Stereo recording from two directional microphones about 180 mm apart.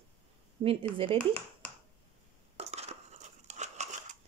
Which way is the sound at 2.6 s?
35° right (ahead or behind).